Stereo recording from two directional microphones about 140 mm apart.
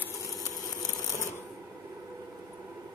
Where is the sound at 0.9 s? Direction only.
20° left (ahead or behind).